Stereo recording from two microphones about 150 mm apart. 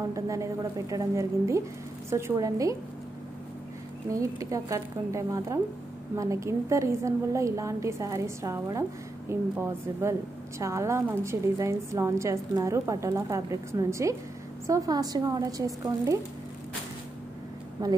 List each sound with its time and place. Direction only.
0.1 s a woman's voice: 20° right (ahead or behind)
4.1 s a woman's voice: 20° right (ahead or behind)
17.8 s a woman's voice: 25° right (ahead or behind)